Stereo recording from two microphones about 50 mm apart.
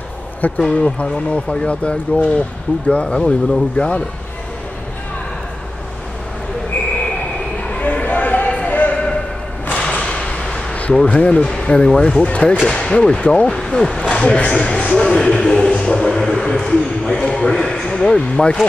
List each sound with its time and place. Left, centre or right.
0.6 s speech: centre
7.8 s a sound: left
10.7 s basketball bounce: left
11.1 s speech: left
14.8 s a sound: left; by 16.4 s centre
16.4 s speech: centre